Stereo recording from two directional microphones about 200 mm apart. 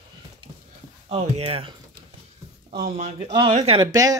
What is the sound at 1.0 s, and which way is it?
Speech, 30° right (ahead or behind).